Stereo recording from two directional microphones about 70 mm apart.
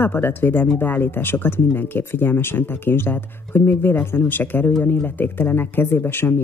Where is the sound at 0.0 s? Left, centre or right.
Left.